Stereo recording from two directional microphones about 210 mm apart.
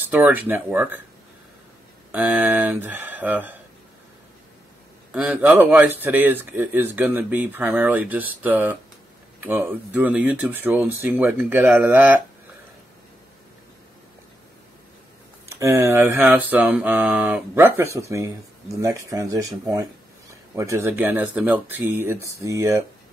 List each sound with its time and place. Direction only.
0.1 s speech: 5° right (ahead or behind)
2.1 s speech: 10° right (ahead or behind)
5.1 s speech: 5° right (ahead or behind)
15.4 s speech: 15° right (ahead or behind)